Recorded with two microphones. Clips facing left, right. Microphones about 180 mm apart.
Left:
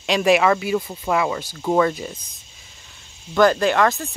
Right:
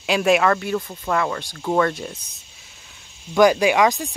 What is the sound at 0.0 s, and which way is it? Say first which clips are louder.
Speech: left 1 dB; centre (ahead or behind).